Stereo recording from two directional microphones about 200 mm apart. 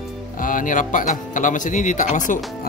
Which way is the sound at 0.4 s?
40° left (ahead or behind).